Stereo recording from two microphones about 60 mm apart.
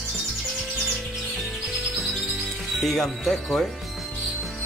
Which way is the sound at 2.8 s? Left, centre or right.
Centre.